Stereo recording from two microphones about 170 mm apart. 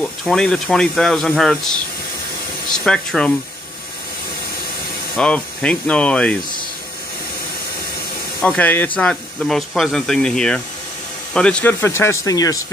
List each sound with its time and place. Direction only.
0.0 s speech: centre (ahead or behind)
5.1 s speech: 5° left (ahead or behind)
8.4 s speech: 10° left (ahead or behind)